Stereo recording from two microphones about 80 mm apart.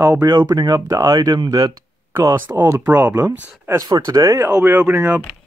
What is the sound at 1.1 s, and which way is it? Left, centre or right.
Speech, right.